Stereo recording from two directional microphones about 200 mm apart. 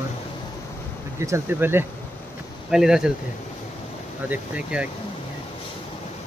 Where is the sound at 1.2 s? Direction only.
10° right (ahead or behind).